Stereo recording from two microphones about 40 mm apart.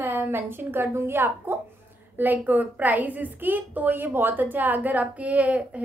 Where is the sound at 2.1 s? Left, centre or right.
Right.